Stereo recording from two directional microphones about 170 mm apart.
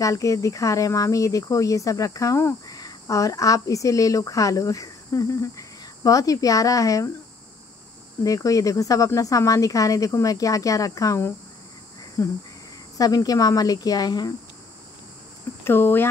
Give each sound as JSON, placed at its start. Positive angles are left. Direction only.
{"t": 0.0, "sound": "speech", "side_deg": 20}
{"t": 8.2, "sound": "speech", "side_deg": 20}
{"t": 15.6, "sound": "speech", "side_deg": 10}